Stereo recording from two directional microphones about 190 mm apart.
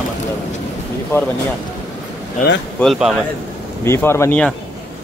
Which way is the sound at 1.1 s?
15° left (ahead or behind).